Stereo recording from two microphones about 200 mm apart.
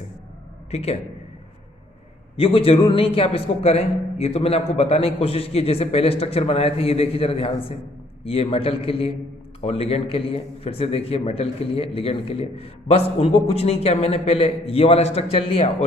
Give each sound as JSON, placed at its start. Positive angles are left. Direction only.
{"t": 0.7, "sound": "a man's voice", "side_deg": 30}
{"t": 2.3, "sound": "a man's voice", "side_deg": 30}